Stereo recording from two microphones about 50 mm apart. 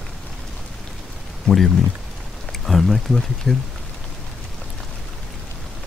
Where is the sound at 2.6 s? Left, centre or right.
Centre.